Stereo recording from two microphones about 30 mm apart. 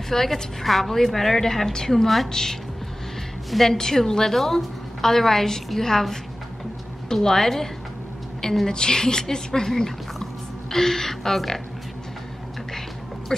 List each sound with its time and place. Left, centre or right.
0.1 s a woman's voice: centre
3.4 s a woman's voice: centre
3.7 s a woman's voice: centre
9.7 s a woman's voice: centre